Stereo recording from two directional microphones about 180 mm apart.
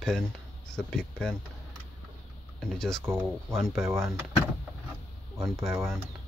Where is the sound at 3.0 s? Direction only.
15° right (ahead or behind).